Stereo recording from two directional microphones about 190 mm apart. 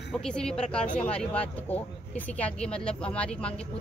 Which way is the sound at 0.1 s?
5° left (ahead or behind).